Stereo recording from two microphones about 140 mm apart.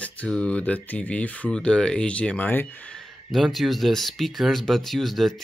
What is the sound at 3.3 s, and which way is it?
Speech, centre (ahead or behind).